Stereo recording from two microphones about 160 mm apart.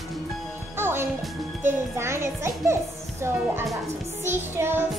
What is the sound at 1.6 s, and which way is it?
A child's voice, 15° right (ahead or behind).